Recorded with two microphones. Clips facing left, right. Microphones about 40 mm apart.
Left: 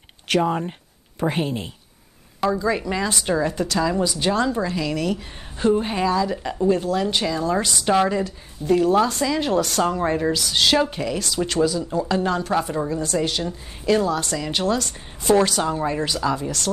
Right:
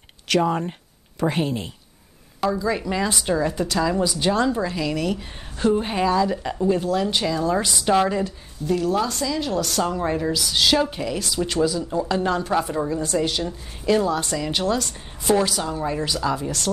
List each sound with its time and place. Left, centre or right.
0.4 s a woman's voice: centre
8.6 s a woman's voice: left
9.6 s a woman's voice: centre
10.9 s speech: centre
14.1 s speech: centre
14.4 s speech: centre
15.6 s a woman's voice: centre
15.9 s a woman's voice: centre
16.4 s speech: centre